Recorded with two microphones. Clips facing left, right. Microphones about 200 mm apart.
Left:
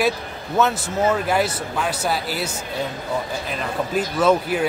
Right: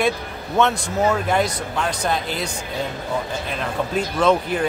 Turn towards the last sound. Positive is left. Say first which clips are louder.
# even
turn(degrees=5)  # may be behind; listen again after turning